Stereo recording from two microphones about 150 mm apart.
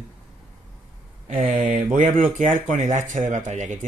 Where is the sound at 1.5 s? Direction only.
45° right (ahead or behind).